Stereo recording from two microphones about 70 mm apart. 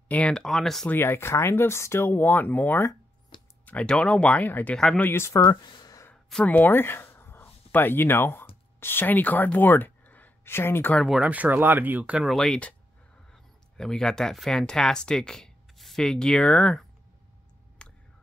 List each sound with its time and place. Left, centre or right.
0.1 s speech: centre
0.8 s speech: left
3.6 s speech: centre
4.5 s speech: left
5.1 s speech: left
5.6 s a sound: left
6.4 s speech: left
10.4 s speech: left
11.1 s speech: right
12.3 s speech: centre
17.8 s a sound: centre